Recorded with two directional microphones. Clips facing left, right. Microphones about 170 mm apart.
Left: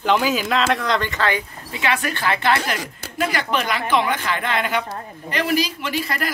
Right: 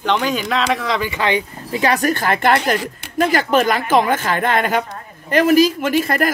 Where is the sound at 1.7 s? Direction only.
40° right (ahead or behind).